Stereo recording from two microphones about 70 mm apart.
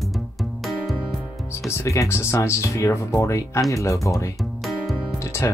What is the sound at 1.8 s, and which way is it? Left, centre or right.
Speech, left.